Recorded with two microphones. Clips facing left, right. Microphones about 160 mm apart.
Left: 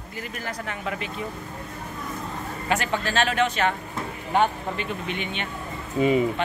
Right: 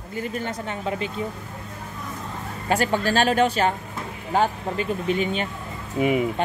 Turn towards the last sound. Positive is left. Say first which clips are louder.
# left 1 dB
turn(degrees=-15)  # may be behind; listen again after turning